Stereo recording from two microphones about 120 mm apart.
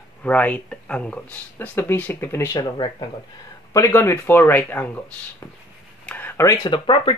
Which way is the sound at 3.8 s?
20° left (ahead or behind).